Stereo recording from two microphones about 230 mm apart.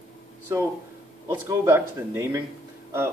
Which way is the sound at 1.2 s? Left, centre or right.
Centre.